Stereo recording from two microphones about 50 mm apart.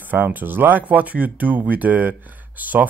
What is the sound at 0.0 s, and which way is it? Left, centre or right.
Speech, right.